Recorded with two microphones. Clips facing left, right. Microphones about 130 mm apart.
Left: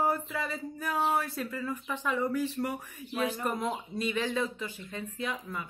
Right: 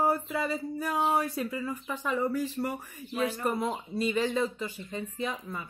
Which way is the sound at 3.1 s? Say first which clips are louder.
Right 1 dB; 15° left (ahead or behind).